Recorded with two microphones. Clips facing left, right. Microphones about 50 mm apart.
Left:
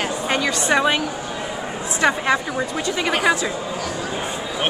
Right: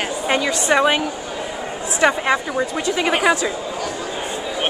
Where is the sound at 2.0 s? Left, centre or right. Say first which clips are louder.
Right 2 dB; centre.